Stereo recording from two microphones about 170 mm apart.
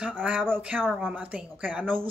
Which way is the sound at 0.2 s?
10° right (ahead or behind).